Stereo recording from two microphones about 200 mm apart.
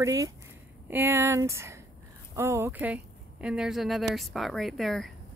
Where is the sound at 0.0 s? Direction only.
15° right (ahead or behind).